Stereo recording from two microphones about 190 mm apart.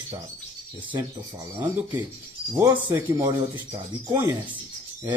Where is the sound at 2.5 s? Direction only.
15° right (ahead or behind).